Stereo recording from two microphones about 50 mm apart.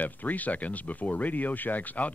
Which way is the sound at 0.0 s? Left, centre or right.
Left.